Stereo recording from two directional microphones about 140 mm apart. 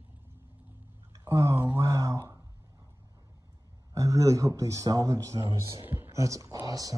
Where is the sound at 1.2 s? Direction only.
20° right (ahead or behind).